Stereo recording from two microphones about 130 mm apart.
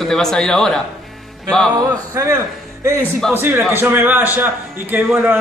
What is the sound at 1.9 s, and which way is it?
Speech, 20° right (ahead or behind).